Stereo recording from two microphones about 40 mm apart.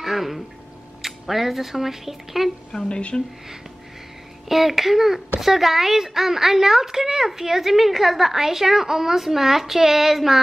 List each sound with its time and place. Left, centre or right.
0.0 s a woman's voice: centre
2.7 s speech: left
4.5 s a woman's voice: centre